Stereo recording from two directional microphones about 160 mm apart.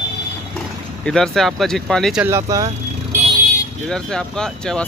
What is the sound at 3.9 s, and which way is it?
Speech, 5° left (ahead or behind).